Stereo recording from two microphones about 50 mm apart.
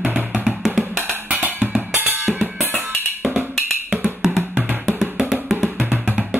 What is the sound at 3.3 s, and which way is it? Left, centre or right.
Music, centre.